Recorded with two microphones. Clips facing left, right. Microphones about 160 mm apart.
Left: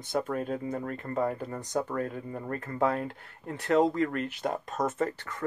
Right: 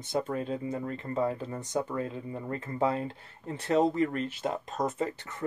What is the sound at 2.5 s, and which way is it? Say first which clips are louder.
Speech: left 1 dB; 25° right (ahead or behind).